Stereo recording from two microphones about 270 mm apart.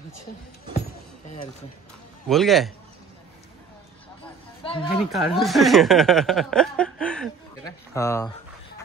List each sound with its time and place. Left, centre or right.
2.2 s speech: centre
4.6 s speech: centre
5.1 s speech: centre